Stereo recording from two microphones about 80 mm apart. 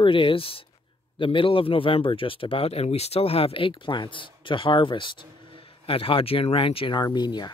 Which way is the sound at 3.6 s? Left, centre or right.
Left.